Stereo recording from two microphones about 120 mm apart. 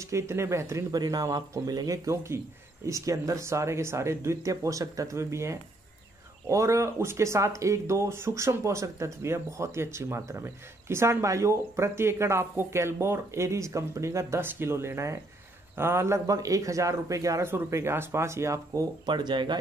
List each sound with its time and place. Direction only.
0.0 s speech: 25° right (ahead or behind)
19.0 s speech: 40° right (ahead or behind)